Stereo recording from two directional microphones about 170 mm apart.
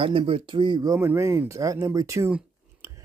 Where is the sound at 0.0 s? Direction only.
30° right (ahead or behind).